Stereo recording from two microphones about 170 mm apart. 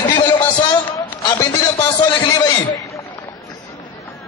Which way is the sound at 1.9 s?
25° left (ahead or behind).